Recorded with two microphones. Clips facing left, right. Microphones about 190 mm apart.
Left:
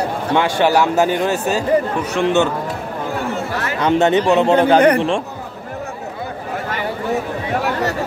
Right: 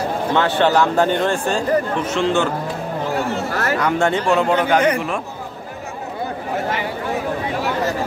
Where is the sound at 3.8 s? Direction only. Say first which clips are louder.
Left 7 dB; 20° left (ahead or behind).